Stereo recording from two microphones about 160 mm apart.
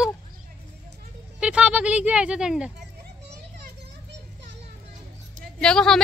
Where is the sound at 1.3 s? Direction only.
5° right (ahead or behind).